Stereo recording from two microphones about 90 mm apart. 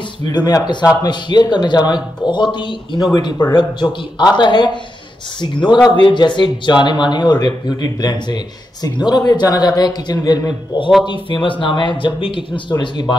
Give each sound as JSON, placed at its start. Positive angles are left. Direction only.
{"t": 0.3, "sound": "a man's voice", "side_deg": 45}
{"t": 11.1, "sound": "speech", "side_deg": 65}